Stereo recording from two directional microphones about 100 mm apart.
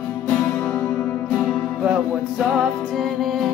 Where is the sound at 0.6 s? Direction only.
20° left (ahead or behind).